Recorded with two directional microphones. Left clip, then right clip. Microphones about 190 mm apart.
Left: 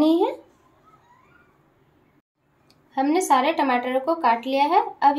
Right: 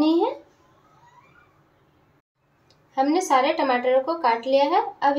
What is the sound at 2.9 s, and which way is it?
A woman's voice, 35° left (ahead or behind).